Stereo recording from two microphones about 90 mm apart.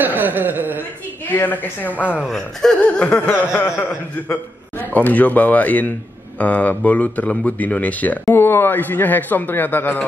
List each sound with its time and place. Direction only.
0.0 s chuckle: 20° right (ahead or behind)
1.3 s a man's voice: 20° left (ahead or behind)
2.2 s speech: 5° left (ahead or behind)
2.8 s a sound: 15° left (ahead or behind)
4.3 s a man's voice: 20° left (ahead or behind)